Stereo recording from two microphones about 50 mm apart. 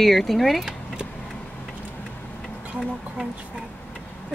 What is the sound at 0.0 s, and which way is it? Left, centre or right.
Speech, centre.